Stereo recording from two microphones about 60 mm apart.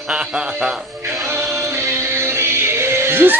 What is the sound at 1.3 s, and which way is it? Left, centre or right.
Music, right.